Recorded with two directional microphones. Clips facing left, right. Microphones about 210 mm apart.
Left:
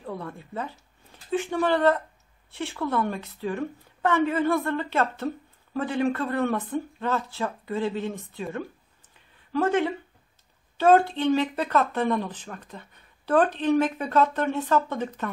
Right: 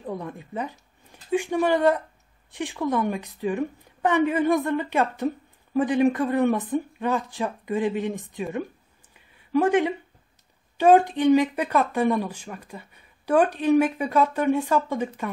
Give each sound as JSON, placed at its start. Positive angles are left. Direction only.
{"t": 0.0, "sound": "a woman's voice", "side_deg": -15}